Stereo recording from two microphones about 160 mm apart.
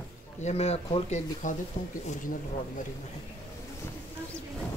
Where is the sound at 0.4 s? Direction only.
40° left (ahead or behind).